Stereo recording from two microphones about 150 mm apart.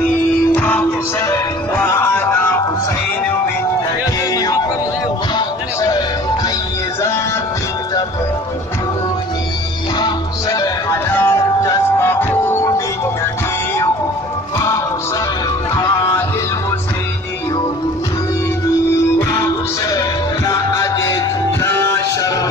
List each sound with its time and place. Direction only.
0.6 s music: 10° left (ahead or behind)
4.3 s music: 25° left (ahead or behind)
9.9 s music: 25° left (ahead or behind)
15.7 s music: 20° left (ahead or behind)
19.1 s music: 20° left (ahead or behind)